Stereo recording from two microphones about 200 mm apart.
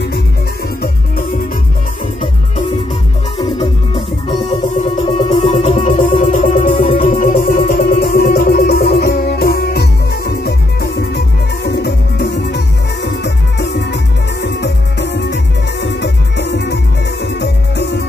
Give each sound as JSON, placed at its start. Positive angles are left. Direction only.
{"t": 3.4, "sound": "music", "side_deg": 20}